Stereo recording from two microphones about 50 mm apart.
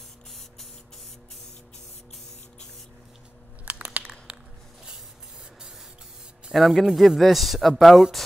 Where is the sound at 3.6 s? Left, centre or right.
Right.